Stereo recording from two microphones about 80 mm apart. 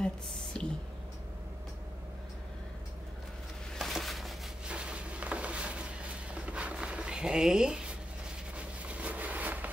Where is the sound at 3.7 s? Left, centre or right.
Centre.